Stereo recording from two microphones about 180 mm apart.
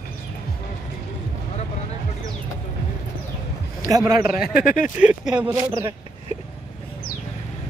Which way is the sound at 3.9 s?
20° right (ahead or behind).